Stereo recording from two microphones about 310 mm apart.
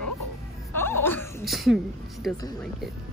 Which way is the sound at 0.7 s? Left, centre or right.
Centre.